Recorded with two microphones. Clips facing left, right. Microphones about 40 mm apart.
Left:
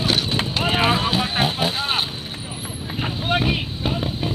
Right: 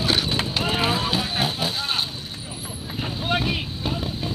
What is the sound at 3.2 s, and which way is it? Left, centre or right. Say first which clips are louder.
Vehicle: left 3 dB; centre.